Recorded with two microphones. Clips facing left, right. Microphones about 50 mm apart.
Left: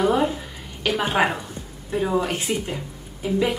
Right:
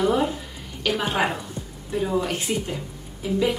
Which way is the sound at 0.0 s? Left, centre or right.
Centre.